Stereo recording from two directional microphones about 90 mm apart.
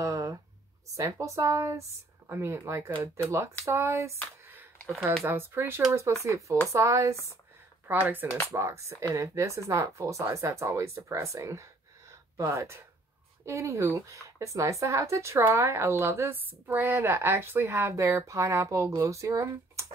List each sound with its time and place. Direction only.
0.0 s a sound: 35° right (ahead or behind)
0.9 s speech: 35° right (ahead or behind)
5.2 s speech: 25° right (ahead or behind)
7.9 s speech: 20° right (ahead or behind)
8.5 s speech: 30° right (ahead or behind)
12.1 s a sound: 35° right (ahead or behind)
13.5 s speech: 35° right (ahead or behind)